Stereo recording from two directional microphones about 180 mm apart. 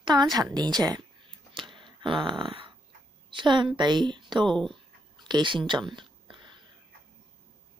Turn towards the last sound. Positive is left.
turn(degrees=-25)  # may be behind; listen again after turning